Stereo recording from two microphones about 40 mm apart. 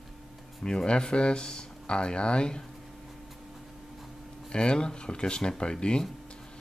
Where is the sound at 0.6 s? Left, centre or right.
Left.